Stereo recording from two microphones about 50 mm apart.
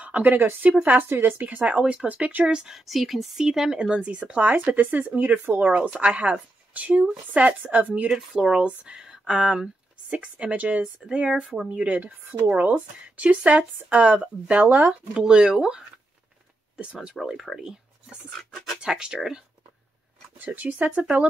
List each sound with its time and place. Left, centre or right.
0.0 s speech: right
0.6 s speech: right
1.0 s speech: right
2.5 s speech: centre
2.9 s speech: centre; by 8.1 s right
8.3 s speech: centre
10.0 s speech: right; by 17.7 s centre
18.4 s speech: centre
18.8 s speech: centre
20.3 s speech: right